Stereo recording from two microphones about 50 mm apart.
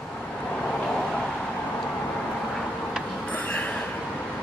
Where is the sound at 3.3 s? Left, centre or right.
Left.